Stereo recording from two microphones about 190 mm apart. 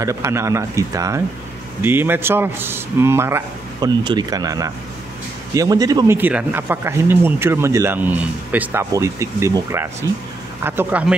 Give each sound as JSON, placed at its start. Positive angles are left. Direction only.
{"t": 0.0, "sound": "a man's voice", "side_deg": -15}